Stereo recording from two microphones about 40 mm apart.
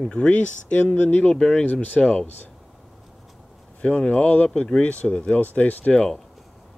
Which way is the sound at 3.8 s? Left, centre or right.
Left.